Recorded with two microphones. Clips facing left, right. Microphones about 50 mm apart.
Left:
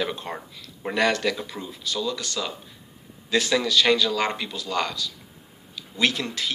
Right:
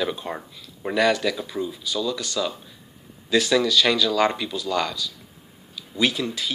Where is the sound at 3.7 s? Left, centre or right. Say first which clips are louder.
Even; left.